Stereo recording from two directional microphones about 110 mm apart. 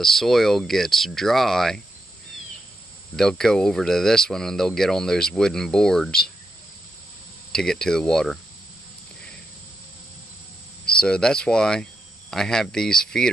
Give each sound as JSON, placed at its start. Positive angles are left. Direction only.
{"t": 0.0, "sound": "speech", "side_deg": 0}
{"t": 3.2, "sound": "speech", "side_deg": 5}
{"t": 7.5, "sound": "speech", "side_deg": 5}
{"t": 10.9, "sound": "speech", "side_deg": 10}